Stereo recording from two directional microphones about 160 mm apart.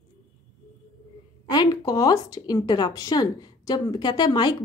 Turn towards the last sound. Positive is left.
turn(degrees=25)  # may be behind; listen again after turning